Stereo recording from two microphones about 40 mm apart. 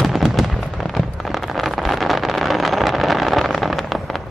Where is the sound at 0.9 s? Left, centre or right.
Centre.